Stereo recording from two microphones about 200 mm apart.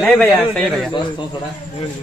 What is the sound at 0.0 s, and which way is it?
Speech, 5° left (ahead or behind).